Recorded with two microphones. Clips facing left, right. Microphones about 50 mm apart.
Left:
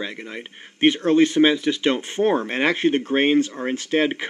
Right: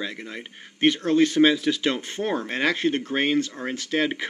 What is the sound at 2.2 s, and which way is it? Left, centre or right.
Speech, left.